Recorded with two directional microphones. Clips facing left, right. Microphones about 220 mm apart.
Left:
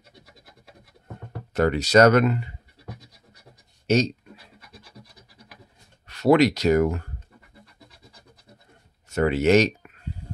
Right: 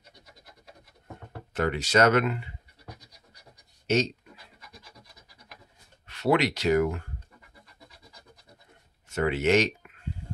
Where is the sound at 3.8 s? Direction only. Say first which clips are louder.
Left 4 dB; 40° left (ahead or behind).